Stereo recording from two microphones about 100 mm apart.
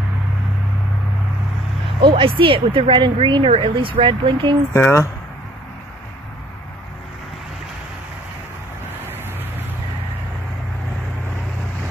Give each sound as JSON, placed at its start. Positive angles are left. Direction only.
{"t": 2.0, "sound": "speech", "side_deg": -60}
{"t": 3.4, "sound": "speech", "side_deg": -65}
{"t": 4.7, "sound": "speech", "side_deg": 25}